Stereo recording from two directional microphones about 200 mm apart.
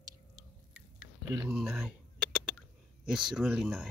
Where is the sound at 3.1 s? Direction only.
Centre (ahead or behind).